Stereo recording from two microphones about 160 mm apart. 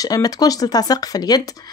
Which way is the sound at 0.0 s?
25° left (ahead or behind).